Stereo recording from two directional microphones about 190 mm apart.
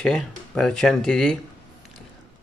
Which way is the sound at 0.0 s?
5° left (ahead or behind).